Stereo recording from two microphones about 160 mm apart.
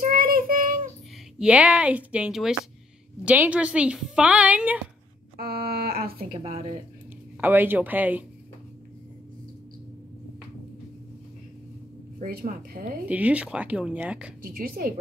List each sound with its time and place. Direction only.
0.0 s child singing: 65° right (ahead or behind)
1.4 s a woman's voice: 10° right (ahead or behind)
5.4 s a sound: 75° right (ahead or behind)
6.3 s a woman's voice: 40° right (ahead or behind)
7.3 s a woman's voice: 10° right (ahead or behind)
12.2 s speech: 65° right (ahead or behind)
13.1 s a woman's voice: 10° right (ahead or behind)
14.4 s speech: 60° right (ahead or behind)